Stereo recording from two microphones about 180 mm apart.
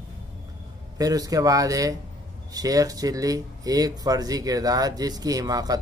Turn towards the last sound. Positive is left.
turn(degrees=-20)  # may be behind; listen again after turning